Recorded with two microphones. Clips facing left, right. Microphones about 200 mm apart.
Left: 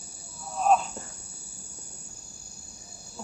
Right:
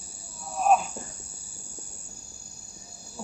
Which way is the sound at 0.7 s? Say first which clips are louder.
Right 1 dB; 10° right (ahead or behind).